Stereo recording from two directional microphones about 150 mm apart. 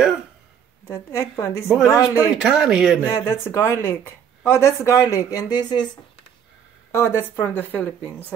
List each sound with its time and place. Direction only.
0.8 s a woman's voice: 20° left (ahead or behind)
2.0 s speech: 5° right (ahead or behind)
3.0 s speech: 15° left (ahead or behind)
6.9 s speech: 15° left (ahead or behind)